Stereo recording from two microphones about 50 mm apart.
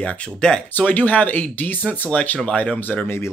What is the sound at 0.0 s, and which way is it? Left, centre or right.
Speech, left.